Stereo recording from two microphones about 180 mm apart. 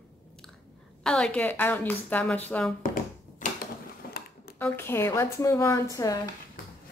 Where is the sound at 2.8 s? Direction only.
50° left (ahead or behind).